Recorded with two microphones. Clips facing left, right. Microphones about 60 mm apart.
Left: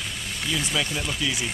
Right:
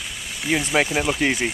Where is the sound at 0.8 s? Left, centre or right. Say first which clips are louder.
Right 7 dB; right.